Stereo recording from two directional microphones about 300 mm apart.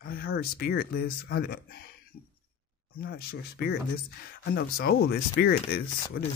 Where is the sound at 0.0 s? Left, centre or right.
Left.